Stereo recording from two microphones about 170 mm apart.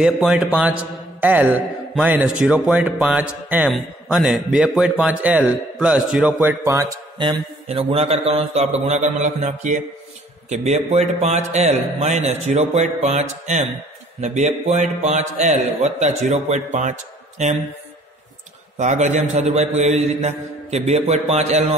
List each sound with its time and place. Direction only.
0.0 s a man's voice: 5° right (ahead or behind)
6.6 s a man's voice: 15° right (ahead or behind); by 16.9 s 45° right (ahead or behind)
18.8 s speech: 45° right (ahead or behind)